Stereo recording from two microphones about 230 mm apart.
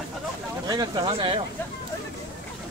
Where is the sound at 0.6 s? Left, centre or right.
Centre.